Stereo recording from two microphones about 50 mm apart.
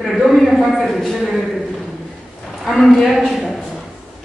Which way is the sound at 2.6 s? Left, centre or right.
Centre.